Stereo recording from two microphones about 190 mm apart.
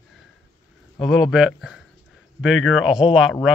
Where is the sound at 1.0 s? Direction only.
Centre (ahead or behind).